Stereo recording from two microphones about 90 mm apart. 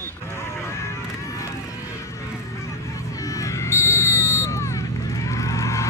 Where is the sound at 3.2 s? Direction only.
40° left (ahead or behind).